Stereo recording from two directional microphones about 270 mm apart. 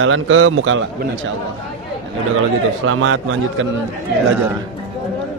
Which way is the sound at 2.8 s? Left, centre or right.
Right.